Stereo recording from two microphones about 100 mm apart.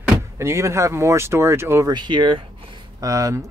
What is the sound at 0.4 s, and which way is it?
Speech, 30° right (ahead or behind).